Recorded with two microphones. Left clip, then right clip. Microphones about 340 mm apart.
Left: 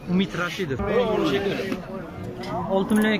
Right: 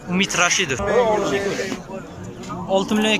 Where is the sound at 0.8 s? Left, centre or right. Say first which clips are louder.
Right 3 dB; right.